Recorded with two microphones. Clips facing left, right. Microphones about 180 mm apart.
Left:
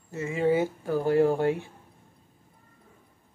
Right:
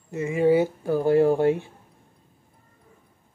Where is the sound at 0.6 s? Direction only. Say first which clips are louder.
Right 4 dB; 15° right (ahead or behind).